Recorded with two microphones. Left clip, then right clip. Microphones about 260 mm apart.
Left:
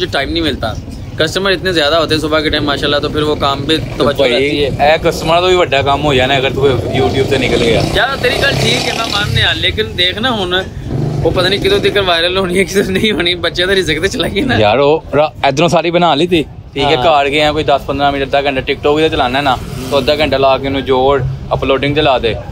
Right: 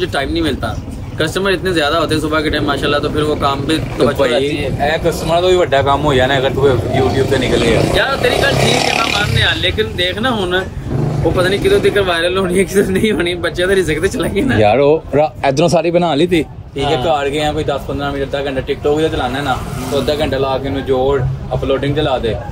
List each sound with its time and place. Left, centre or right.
0.1 s speech: centre
5.3 s speech: centre
5.7 s speech: centre
17.0 s a man's voice: left
17.3 s speech: centre
20.5 s speech: centre
21.6 s a man's voice: left
21.9 s speech: centre